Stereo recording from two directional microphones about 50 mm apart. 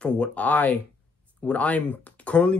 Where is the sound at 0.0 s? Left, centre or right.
Left.